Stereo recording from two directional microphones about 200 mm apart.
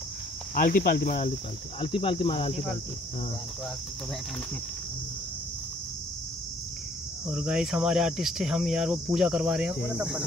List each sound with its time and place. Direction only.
0.6 s cricket: 45° left (ahead or behind)
1.8 s speech: 25° left (ahead or behind)
7.2 s cricket: 5° right (ahead or behind)